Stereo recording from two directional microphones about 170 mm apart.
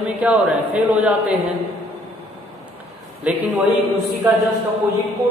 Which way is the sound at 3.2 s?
10° right (ahead or behind).